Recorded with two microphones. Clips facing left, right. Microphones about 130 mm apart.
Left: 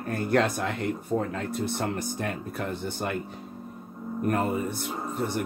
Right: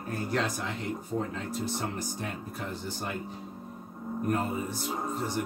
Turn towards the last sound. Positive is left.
turn(degrees=60)  # may be behind; listen again after turning